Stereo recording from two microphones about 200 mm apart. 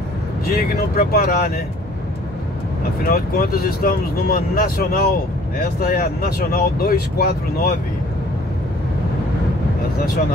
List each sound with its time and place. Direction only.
0.6 s speech: 45° left (ahead or behind)
3.1 s speech: 50° left (ahead or behind)